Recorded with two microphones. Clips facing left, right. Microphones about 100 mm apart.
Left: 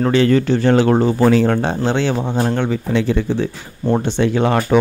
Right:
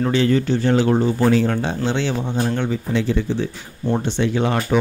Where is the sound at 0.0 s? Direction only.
65° left (ahead or behind).